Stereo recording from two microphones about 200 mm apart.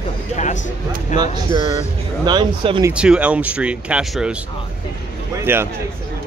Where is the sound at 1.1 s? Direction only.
35° left (ahead or behind).